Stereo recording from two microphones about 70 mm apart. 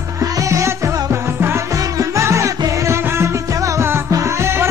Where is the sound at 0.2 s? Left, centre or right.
Right.